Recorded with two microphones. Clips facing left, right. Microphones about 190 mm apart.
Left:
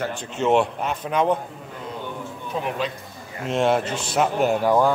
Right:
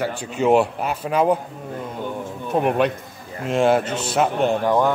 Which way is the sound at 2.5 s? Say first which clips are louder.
Right 8 dB; 60° right (ahead or behind).